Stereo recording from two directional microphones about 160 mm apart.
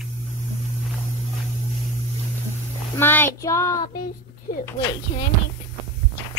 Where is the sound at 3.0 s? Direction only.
15° left (ahead or behind).